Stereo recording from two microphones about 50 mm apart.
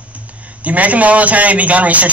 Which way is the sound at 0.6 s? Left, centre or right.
Right.